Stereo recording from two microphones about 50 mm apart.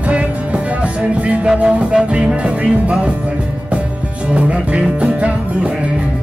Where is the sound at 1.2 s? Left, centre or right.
Right.